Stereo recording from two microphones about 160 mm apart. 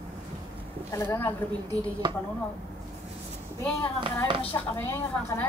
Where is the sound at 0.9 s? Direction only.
15° left (ahead or behind).